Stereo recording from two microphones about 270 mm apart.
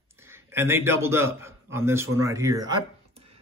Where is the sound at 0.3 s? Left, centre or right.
Centre.